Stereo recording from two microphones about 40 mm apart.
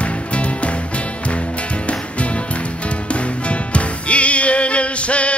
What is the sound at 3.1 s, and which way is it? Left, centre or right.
Music, left.